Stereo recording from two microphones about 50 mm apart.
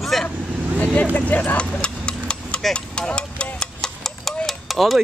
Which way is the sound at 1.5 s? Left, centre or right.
Left.